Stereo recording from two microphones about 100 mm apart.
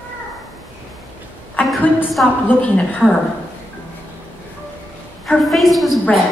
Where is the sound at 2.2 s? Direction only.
10° left (ahead or behind).